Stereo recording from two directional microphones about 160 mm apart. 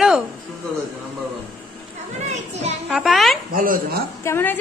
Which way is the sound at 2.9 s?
Centre (ahead or behind).